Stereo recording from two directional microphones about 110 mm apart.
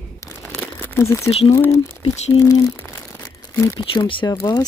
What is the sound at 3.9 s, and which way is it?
Speech, 50° left (ahead or behind).